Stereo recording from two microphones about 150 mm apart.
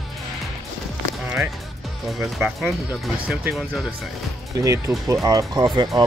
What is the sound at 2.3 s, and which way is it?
Speech, centre (ahead or behind).